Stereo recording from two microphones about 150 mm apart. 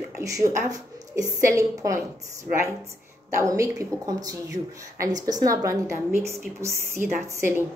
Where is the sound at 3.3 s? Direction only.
20° right (ahead or behind).